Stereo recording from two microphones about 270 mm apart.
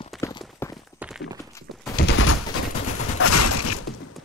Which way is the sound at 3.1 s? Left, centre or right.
Left.